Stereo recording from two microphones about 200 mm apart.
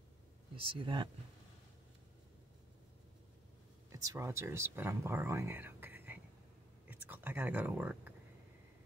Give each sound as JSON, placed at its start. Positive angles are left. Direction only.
{"t": 0.6, "sound": "speech", "side_deg": -25}
{"t": 3.9, "sound": "speech", "side_deg": -15}